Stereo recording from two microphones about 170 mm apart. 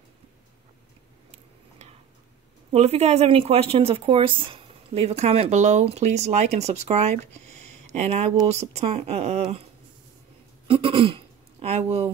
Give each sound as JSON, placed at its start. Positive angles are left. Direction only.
{"t": 2.7, "sound": "speech", "side_deg": -40}
{"t": 10.7, "sound": "speech", "side_deg": -30}